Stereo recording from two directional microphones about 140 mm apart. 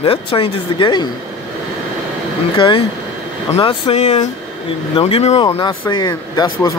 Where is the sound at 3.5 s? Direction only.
40° left (ahead or behind).